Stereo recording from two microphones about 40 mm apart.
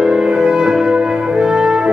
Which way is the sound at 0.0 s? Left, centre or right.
Centre.